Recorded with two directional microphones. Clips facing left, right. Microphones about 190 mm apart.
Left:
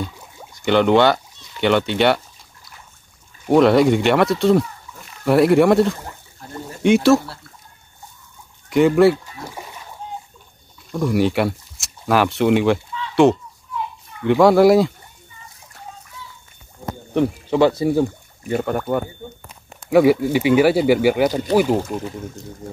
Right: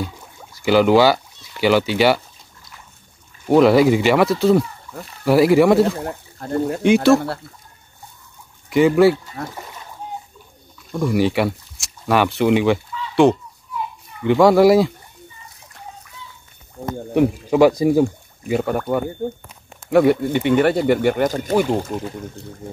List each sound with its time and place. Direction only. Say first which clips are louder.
0.6 s speech: right 1 dB; 5° right (ahead or behind)
3.4 s speech: right 1 dB; centre (ahead or behind)
6.0 s speech: right 10 dB; 60° right (ahead or behind)
6.8 s speech: left 1 dB; centre (ahead or behind)
8.6 s speech: even; centre (ahead or behind)
9.4 s speech: right 5 dB; 60° right (ahead or behind)
10.9 s speech: even; centre (ahead or behind)
16.8 s a sound: right 3 dB; 60° right (ahead or behind)
17.1 s speech: right 2 dB; 10° right (ahead or behind)
18.5 s speech: right 1 dB; centre (ahead or behind)